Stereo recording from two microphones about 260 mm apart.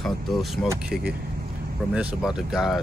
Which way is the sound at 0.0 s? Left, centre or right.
Centre.